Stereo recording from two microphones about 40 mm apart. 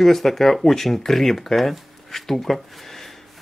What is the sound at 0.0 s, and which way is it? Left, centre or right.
Speech, centre.